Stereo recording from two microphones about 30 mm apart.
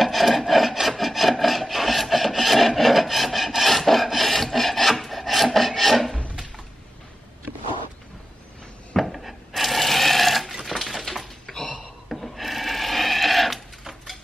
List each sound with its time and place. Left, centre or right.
0.0 s rub: centre
4.1 s filing: centre
8.9 s sewing machine: centre
10.7 s a sound: centre
11.4 s a sound: left
12.1 s wood: centre